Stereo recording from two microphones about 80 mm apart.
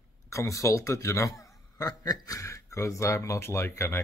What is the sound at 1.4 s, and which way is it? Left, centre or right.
Speech, left.